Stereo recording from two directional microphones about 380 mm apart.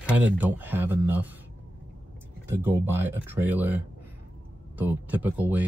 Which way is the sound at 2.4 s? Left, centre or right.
Centre.